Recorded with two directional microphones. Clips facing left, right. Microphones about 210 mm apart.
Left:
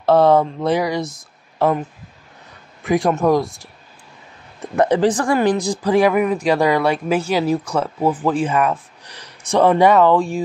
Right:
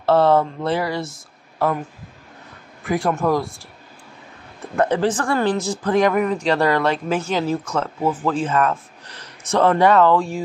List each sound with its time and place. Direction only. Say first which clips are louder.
0.0 s speech: left 2 dB; 15° left (ahead or behind)
2.8 s speech: left 4 dB; 20° left (ahead or behind)
4.7 s speech: left 3 dB; 15° left (ahead or behind)